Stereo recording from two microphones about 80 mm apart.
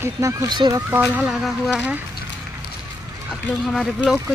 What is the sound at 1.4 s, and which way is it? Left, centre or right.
Insect, centre.